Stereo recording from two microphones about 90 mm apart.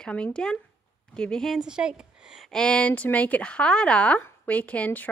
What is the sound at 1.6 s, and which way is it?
Speech, 10° right (ahead or behind).